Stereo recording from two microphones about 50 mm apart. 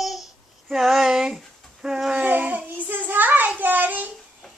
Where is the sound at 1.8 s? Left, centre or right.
Centre.